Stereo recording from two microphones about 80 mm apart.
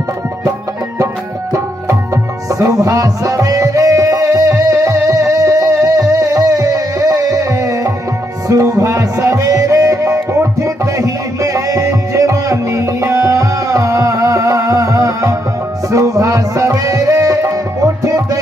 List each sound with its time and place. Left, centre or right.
2.6 s music: right